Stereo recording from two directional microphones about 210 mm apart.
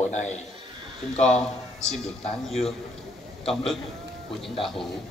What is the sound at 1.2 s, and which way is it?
A man's voice, 5° left (ahead or behind).